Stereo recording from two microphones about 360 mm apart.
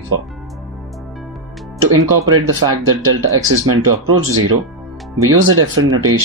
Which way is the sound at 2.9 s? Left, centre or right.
Right.